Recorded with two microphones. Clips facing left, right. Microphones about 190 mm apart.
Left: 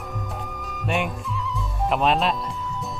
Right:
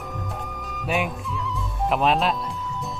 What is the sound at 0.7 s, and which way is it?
Music, centre (ahead or behind).